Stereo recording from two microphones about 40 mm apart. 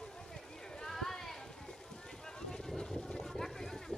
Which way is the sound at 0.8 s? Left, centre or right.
Centre.